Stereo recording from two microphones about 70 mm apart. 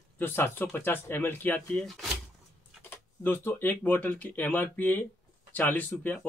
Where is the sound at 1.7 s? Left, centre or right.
Centre.